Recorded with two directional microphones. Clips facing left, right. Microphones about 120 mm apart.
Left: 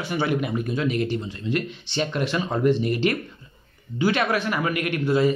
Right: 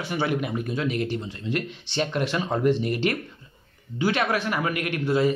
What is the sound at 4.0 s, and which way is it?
A man's voice, 30° right (ahead or behind).